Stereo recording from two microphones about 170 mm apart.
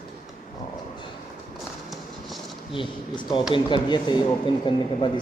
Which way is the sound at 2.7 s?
30° left (ahead or behind).